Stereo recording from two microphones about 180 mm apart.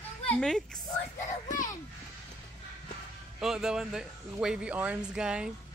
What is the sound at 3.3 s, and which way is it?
A man's voice, 5° right (ahead or behind).